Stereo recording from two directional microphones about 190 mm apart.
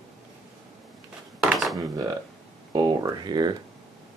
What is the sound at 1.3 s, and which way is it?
Dishes, centre (ahead or behind).